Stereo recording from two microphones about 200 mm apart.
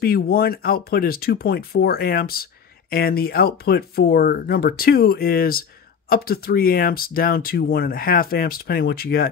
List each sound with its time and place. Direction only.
0.0 s speech: 50° left (ahead or behind)